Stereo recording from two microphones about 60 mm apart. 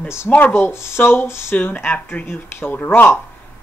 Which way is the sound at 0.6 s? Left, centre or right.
Left.